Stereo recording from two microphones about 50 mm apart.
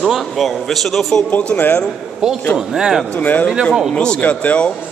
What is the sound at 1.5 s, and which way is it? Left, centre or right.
Speech, left.